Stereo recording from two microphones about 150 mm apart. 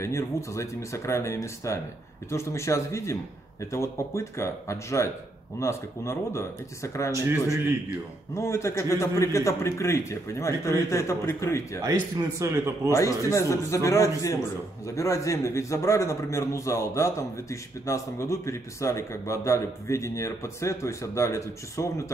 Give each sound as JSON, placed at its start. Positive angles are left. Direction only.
{"t": 0.0, "sound": "a man's voice", "side_deg": 20}
{"t": 7.1, "sound": "a man's voice", "side_deg": -20}
{"t": 8.4, "sound": "a man's voice", "side_deg": 20}
{"t": 11.8, "sound": "a man's voice", "side_deg": -20}
{"t": 12.9, "sound": "a man's voice", "side_deg": 20}